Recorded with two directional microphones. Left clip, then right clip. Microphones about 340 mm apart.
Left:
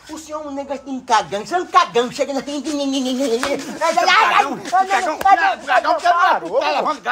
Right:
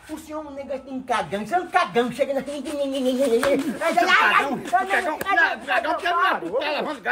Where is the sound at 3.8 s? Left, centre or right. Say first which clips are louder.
Left 6 dB; centre.